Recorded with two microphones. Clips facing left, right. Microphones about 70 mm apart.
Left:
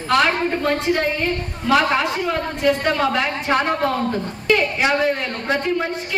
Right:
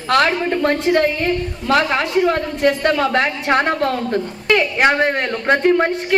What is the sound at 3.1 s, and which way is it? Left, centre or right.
A woman's voice, right.